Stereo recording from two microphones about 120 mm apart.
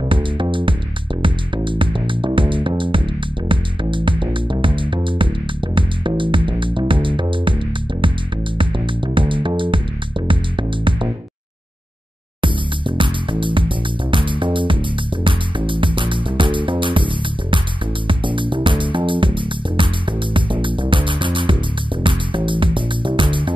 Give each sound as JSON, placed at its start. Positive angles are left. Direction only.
{"t": 0.1, "sound": "music", "side_deg": -45}
{"t": 8.5, "sound": "music", "side_deg": -45}
{"t": 12.4, "sound": "music", "side_deg": -45}